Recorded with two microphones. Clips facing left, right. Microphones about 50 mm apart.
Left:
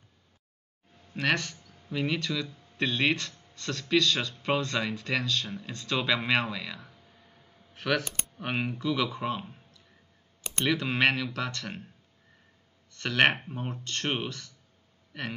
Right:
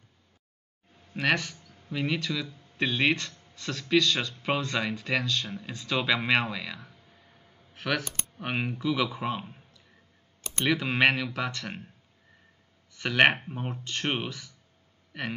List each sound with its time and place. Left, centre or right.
1.1 s speech: centre
12.9 s speech: centre